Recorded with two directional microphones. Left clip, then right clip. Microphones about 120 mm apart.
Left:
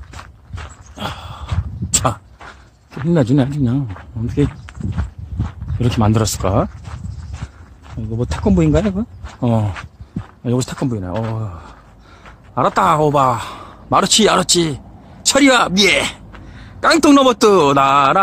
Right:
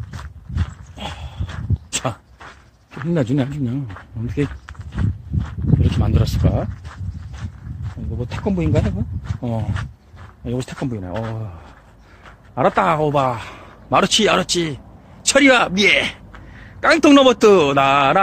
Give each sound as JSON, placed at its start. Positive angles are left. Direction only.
{"t": 0.1, "sound": "walk", "side_deg": 0}
{"t": 0.9, "sound": "horse", "side_deg": 55}
{"t": 3.1, "sound": "a man's voice", "side_deg": 35}
{"t": 5.8, "sound": "speech", "side_deg": 90}
{"t": 8.2, "sound": "speech", "side_deg": 70}
{"t": 9.4, "sound": "speech", "side_deg": 90}
{"t": 10.4, "sound": "speech", "side_deg": 55}
{"t": 10.8, "sound": "a man's voice", "side_deg": 30}
{"t": 12.5, "sound": "a man's voice", "side_deg": 30}